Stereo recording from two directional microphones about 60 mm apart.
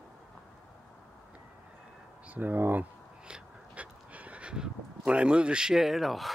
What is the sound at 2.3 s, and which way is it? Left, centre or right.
Speech, right.